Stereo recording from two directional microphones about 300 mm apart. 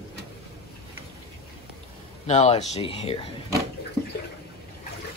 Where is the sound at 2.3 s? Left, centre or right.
Left.